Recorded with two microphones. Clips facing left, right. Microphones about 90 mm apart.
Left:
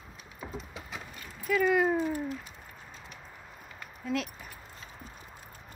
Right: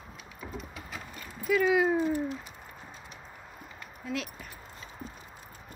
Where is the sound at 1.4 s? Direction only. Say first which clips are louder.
Right 1 dB; 5° right (ahead or behind).